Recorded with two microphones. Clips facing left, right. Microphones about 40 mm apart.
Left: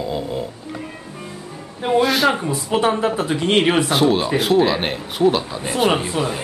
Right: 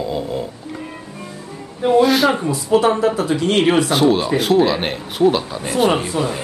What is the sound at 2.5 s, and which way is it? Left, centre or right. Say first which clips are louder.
Speech: right 3 dB; left.